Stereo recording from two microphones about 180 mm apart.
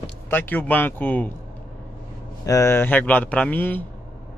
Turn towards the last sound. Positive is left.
turn(degrees=10)  # may be behind; listen again after turning